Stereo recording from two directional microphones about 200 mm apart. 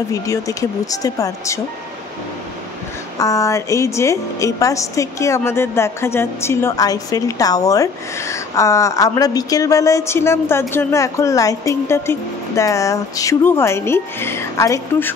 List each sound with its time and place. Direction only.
0.1 s a woman's voice: 15° left (ahead or behind)
3.2 s a woman's voice: 15° left (ahead or behind)